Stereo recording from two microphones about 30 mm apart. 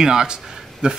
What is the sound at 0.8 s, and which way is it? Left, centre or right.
Speech, right.